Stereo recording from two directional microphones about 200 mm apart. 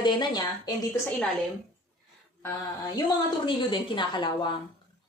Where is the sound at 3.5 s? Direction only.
25° left (ahead or behind).